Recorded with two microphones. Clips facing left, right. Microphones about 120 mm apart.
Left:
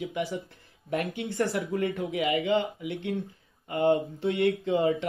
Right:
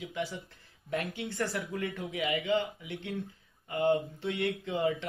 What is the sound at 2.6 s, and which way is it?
Speech, 60° left (ahead or behind).